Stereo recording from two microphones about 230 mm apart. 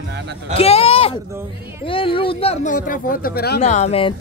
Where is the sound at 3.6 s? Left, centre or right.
Left.